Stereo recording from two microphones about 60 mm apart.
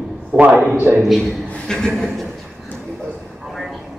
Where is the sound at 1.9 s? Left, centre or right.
Centre.